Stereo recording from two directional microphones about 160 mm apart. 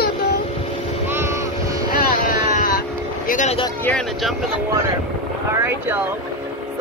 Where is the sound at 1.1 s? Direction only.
15° right (ahead or behind).